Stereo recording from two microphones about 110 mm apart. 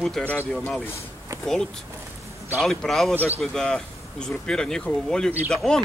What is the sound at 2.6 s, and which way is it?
Speech, centre (ahead or behind).